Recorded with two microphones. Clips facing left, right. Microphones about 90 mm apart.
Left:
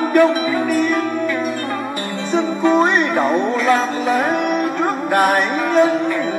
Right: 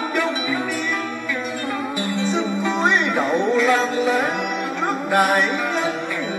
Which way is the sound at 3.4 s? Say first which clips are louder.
Left 1 dB; centre (ahead or behind).